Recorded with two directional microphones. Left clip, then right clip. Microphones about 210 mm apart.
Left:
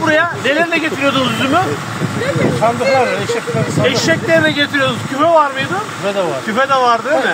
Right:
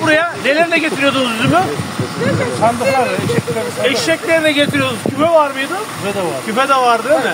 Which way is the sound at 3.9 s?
25° right (ahead or behind).